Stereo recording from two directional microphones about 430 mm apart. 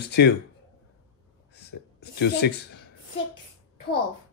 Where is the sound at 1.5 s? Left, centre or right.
Left.